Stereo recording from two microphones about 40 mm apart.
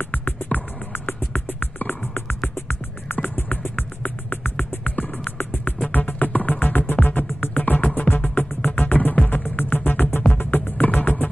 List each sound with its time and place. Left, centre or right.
0.1 s music: left
0.9 s music: left